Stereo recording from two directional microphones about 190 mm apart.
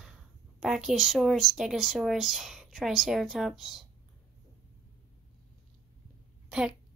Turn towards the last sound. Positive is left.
turn(degrees=-5)  # may be behind; listen again after turning